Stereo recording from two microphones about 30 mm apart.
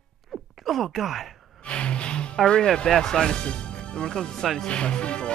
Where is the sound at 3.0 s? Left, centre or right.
Left.